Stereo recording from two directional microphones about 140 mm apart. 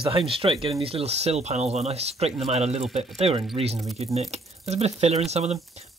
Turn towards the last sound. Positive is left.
turn(degrees=-50)  # may be behind; listen again after turning